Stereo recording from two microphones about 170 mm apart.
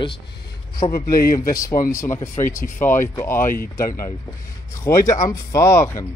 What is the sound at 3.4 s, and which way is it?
Speech, 55° left (ahead or behind).